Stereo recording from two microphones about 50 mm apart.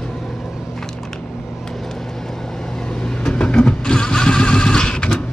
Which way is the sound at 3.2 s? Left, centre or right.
Centre.